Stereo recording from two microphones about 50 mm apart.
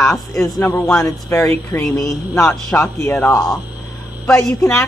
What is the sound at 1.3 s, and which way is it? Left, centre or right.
Speech, left.